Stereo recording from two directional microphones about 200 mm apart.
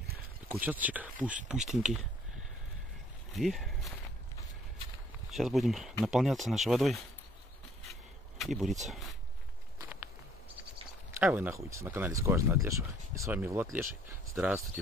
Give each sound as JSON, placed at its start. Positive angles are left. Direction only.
{"t": 0.5, "sound": "speech", "side_deg": -10}
{"t": 3.3, "sound": "speech", "side_deg": 0}
{"t": 5.3, "sound": "speech", "side_deg": 0}
{"t": 7.9, "sound": "a sound", "side_deg": 0}
{"t": 11.1, "sound": "speech", "side_deg": -10}